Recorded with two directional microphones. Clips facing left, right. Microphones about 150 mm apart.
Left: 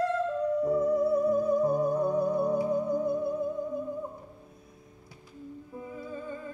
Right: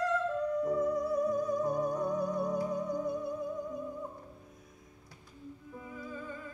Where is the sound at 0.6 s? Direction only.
30° left (ahead or behind).